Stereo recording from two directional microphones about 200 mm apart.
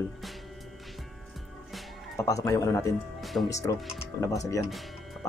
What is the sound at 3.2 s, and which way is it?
Music, centre (ahead or behind).